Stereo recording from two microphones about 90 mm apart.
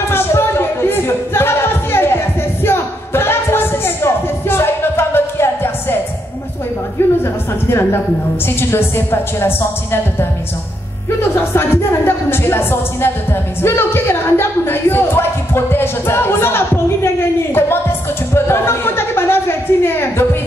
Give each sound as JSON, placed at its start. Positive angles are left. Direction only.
{"t": 0.1, "sound": "music", "side_deg": 25}
{"t": 7.6, "sound": "a woman's voice", "side_deg": 25}
{"t": 11.3, "sound": "a woman's voice", "side_deg": 25}